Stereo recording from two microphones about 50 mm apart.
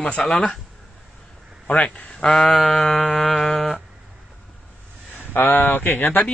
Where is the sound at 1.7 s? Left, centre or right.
Left.